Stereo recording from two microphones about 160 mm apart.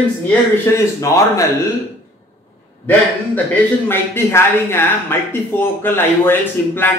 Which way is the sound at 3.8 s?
15° left (ahead or behind).